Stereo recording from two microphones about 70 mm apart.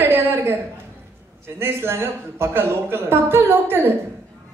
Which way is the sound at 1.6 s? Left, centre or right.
Right.